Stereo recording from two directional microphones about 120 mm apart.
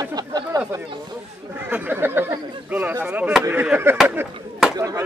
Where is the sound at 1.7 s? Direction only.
15° right (ahead or behind).